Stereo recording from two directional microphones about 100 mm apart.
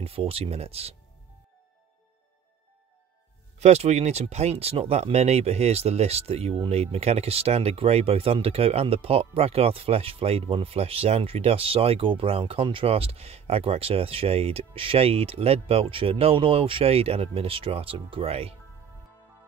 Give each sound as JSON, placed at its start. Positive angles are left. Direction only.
{"t": 0.0, "sound": "speech", "side_deg": -75}
{"t": 3.5, "sound": "speech", "side_deg": -90}